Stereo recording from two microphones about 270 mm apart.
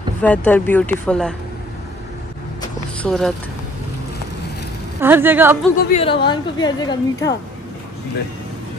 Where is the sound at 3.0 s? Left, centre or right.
Centre.